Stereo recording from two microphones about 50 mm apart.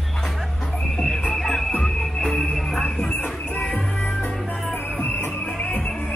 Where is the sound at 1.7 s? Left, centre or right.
Centre.